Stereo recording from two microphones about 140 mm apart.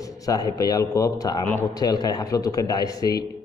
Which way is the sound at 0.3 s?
25° left (ahead or behind).